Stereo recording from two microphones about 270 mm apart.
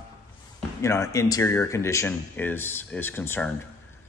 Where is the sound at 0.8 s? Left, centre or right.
Centre.